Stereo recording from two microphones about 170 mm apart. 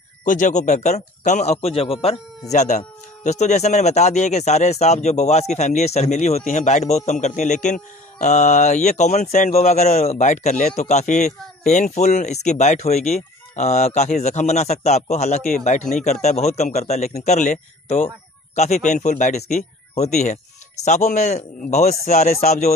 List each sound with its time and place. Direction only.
0.2 s a man's voice: 50° left (ahead or behind)